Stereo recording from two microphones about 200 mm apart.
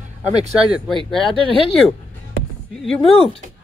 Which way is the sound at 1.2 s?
25° left (ahead or behind).